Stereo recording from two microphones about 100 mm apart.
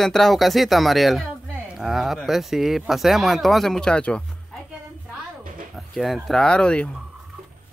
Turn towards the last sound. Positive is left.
turn(degrees=10)  # may be behind; listen again after turning